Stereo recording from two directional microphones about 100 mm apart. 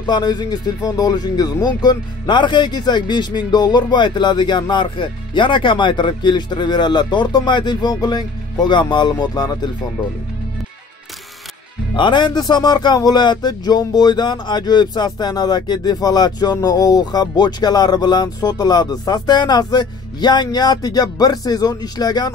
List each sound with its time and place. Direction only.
0.0 s speech: 45° left (ahead or behind)
11.9 s speech: 50° left (ahead or behind)